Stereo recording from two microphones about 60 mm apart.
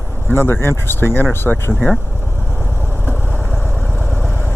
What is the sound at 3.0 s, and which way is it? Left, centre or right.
Vehicle, left.